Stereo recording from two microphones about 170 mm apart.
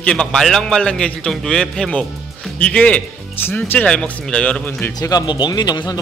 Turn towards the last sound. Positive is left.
turn(degrees=25)  # may be behind; listen again after turning